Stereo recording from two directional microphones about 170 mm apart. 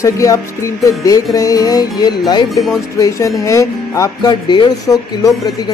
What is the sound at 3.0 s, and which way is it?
Speech, 20° left (ahead or behind).